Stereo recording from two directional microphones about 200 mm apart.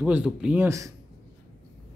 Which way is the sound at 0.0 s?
5° right (ahead or behind).